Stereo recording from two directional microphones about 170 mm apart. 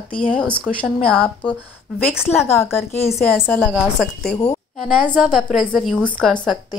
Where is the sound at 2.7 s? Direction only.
15° left (ahead or behind).